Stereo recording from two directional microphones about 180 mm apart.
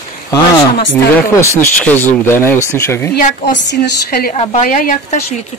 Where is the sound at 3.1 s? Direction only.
45° left (ahead or behind).